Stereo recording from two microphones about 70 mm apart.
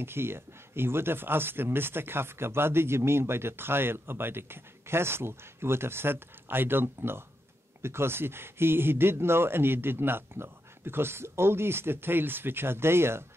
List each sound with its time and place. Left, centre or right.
0.0 s speech: right